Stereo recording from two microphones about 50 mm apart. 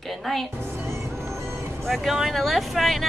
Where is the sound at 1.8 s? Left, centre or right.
Centre.